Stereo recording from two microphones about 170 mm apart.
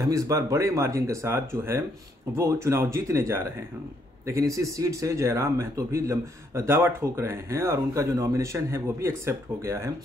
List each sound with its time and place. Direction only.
0.1 s speech: 20° right (ahead or behind)